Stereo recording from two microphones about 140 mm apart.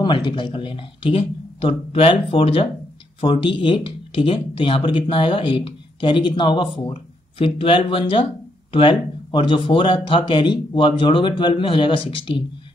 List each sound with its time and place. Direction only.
0.0 s speech: 35° left (ahead or behind)